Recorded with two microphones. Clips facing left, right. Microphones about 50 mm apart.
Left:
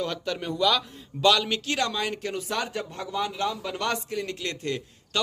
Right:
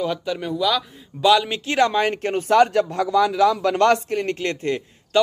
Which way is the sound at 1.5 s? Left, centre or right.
Right.